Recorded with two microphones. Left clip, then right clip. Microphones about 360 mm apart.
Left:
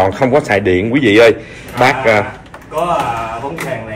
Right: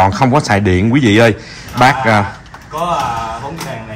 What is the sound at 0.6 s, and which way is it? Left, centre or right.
Speech, right.